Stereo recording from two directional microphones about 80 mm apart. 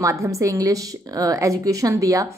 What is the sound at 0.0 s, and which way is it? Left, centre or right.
A woman's voice, right.